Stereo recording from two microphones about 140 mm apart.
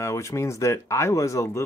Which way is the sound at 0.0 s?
20° left (ahead or behind).